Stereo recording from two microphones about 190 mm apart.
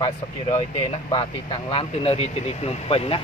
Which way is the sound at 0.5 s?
30° left (ahead or behind).